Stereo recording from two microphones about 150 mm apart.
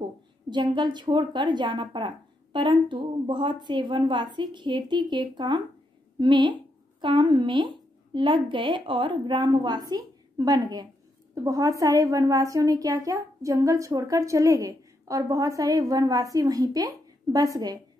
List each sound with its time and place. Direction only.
0.5 s a woman's voice: 30° right (ahead or behind)